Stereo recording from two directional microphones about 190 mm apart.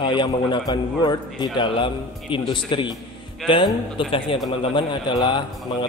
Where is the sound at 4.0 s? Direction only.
25° left (ahead or behind).